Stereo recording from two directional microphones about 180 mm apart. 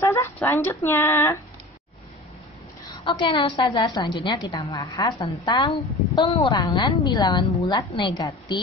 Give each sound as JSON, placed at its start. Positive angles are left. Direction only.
{"t": 0.0, "sound": "speech", "side_deg": 15}
{"t": 3.0, "sound": "a woman's voice", "side_deg": 30}